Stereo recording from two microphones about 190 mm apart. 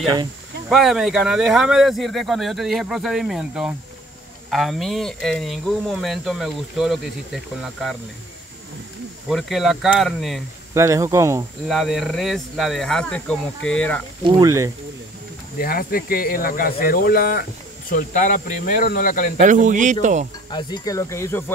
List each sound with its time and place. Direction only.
0.7 s speech: centre (ahead or behind)
9.3 s speech: centre (ahead or behind)
10.7 s speech: 15° right (ahead or behind)
11.6 s speech: centre (ahead or behind)
14.2 s speech: 20° right (ahead or behind)
15.6 s speech: 50° left (ahead or behind)
17.9 s speech: 40° left (ahead or behind)
19.4 s speech: 40° right (ahead or behind)
20.5 s speech: 20° left (ahead or behind)